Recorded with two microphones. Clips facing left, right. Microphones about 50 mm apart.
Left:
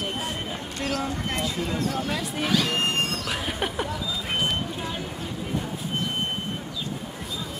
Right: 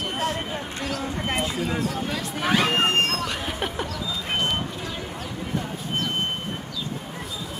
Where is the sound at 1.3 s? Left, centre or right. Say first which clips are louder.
Right 2 dB; centre.